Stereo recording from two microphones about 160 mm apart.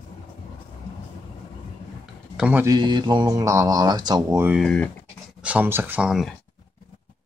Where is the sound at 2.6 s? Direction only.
25° right (ahead or behind).